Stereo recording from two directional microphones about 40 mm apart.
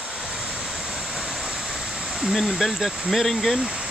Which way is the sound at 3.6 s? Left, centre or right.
Centre.